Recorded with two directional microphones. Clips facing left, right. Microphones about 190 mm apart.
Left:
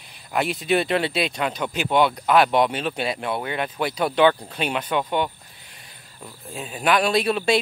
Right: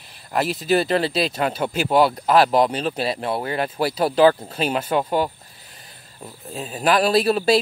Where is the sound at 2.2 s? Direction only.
30° right (ahead or behind).